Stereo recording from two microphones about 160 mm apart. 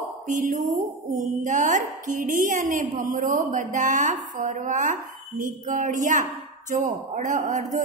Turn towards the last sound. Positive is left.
turn(degrees=-55)  # may be behind; listen again after turning